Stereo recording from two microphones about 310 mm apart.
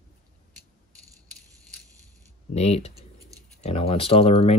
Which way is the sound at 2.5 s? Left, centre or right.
Centre.